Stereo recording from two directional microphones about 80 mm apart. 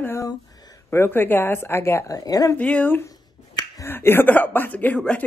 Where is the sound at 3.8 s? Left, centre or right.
Left; by 5.2 s centre.